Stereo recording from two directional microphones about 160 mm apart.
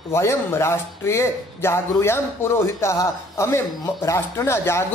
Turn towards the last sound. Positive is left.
turn(degrees=15)  # may be behind; listen again after turning